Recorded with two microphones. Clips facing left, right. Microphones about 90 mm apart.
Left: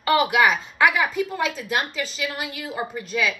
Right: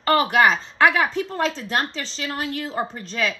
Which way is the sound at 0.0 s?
40° right (ahead or behind).